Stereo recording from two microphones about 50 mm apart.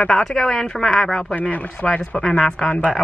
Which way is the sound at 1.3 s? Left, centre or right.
Left.